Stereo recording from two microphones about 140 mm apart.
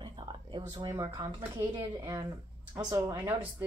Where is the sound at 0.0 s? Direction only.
35° right (ahead or behind).